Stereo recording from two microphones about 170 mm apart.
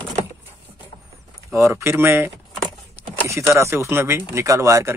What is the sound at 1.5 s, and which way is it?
Speech, 15° right (ahead or behind).